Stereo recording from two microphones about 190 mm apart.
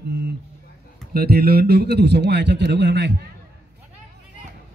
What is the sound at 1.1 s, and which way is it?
A man's voice, 55° right (ahead or behind).